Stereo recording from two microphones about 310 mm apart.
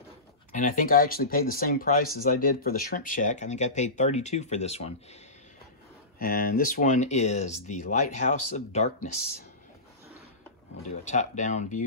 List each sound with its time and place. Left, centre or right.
0.5 s speech: left
6.1 s speech: left
10.8 s speech: left